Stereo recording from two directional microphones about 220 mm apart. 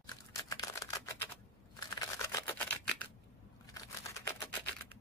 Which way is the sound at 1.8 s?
15° left (ahead or behind).